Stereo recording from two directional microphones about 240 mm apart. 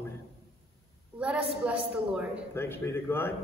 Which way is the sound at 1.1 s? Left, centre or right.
Centre.